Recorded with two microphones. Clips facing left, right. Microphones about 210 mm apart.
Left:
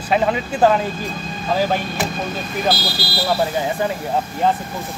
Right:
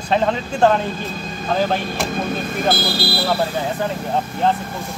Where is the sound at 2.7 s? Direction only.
50° right (ahead or behind).